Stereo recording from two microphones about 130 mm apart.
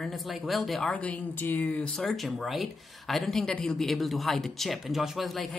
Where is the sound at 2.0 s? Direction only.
Centre (ahead or behind).